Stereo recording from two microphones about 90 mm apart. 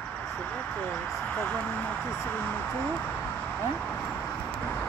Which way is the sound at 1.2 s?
15° left (ahead or behind).